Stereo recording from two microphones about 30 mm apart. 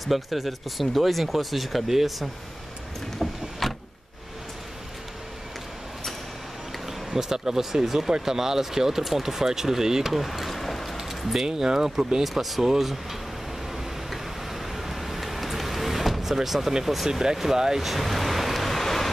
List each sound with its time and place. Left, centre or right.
0.0 s speech: centre
3.2 s vehicle: centre
6.9 s speech: centre
10.4 s a sound: centre
11.4 s speech: right
12.2 s speech: centre
14.1 s vehicle: centre
16.8 s speech: centre
17.7 s vehicle: centre